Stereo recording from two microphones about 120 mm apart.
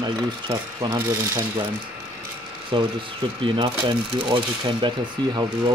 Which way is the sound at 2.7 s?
40° right (ahead or behind).